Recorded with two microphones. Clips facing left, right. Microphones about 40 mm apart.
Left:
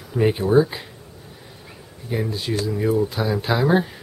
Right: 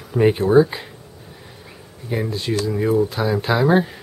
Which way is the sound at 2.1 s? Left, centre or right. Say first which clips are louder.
Right 2 dB; centre.